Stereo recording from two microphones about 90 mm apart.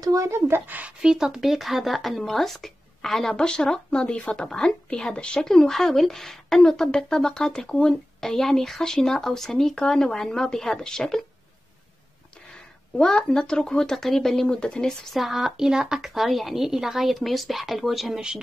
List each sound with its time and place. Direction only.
0.0 s speech: 40° right (ahead or behind); by 0.9 s 20° right (ahead or behind)
1.0 s speech: 5° right (ahead or behind)
12.9 s speech: 10° left (ahead or behind)
15.1 s speech: 5° right (ahead or behind)